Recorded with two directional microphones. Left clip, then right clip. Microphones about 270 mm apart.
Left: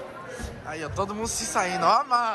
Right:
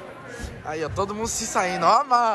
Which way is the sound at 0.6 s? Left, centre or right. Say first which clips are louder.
Right 4 dB; centre.